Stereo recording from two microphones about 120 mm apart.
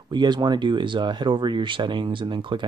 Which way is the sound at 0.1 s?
35° right (ahead or behind).